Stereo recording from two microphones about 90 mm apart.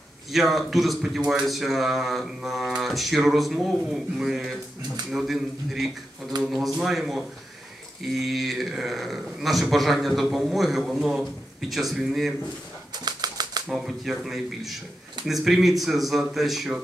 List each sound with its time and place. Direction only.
0.3 s speech: centre (ahead or behind)
12.9 s typewriter: 50° right (ahead or behind)
13.7 s speech: 5° right (ahead or behind)